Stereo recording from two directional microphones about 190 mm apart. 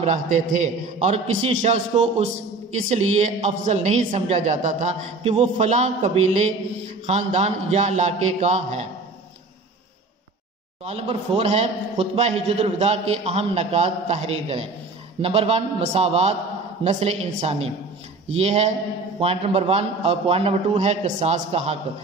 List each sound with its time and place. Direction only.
0.0 s speech: 40° right (ahead or behind)
10.9 s speech: 35° right (ahead or behind)